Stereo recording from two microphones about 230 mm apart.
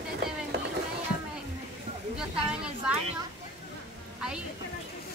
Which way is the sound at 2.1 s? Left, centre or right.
Centre.